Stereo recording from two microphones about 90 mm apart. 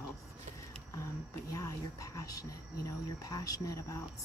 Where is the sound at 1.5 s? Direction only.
40° left (ahead or behind).